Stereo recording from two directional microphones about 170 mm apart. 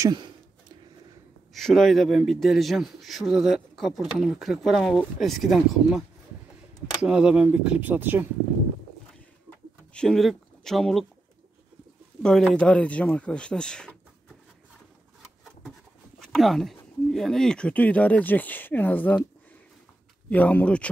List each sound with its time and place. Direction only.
0.0 s a sound: 25° right (ahead or behind)
1.5 s a man's voice: centre (ahead or behind)
9.9 s speech: centre (ahead or behind)
12.2 s a man's voice: 5° left (ahead or behind)
16.2 s speech: centre (ahead or behind)
20.2 s speech: 10° left (ahead or behind)